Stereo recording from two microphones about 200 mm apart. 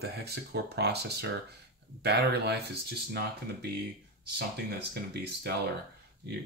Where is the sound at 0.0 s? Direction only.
55° right (ahead or behind).